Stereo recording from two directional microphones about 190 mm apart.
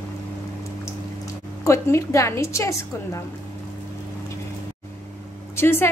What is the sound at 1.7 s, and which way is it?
A woman's voice, 15° left (ahead or behind).